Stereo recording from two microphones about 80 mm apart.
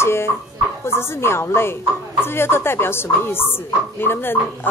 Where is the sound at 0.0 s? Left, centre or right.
Left.